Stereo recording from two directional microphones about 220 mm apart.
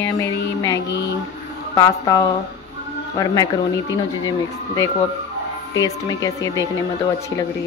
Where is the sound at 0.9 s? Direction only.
50° left (ahead or behind).